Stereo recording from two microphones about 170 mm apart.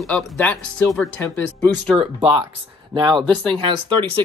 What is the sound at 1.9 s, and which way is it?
Speech, 30° right (ahead or behind).